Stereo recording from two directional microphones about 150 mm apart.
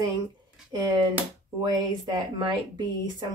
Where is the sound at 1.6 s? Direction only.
25° right (ahead or behind).